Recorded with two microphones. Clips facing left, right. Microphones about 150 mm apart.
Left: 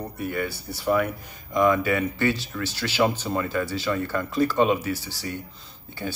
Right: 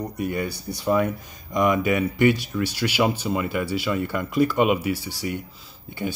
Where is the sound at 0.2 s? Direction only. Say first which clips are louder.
Right 1 dB; 20° right (ahead or behind).